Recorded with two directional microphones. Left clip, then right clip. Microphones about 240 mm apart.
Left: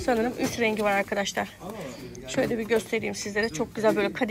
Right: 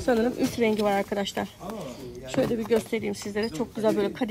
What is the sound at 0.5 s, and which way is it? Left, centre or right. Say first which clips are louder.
Speech: left 1 dB; centre.